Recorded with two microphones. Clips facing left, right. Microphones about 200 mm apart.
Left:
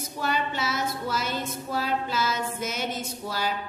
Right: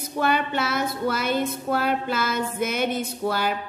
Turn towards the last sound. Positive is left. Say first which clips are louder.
# right 6 dB
turn(degrees=-60)  # may be behind; listen again after turning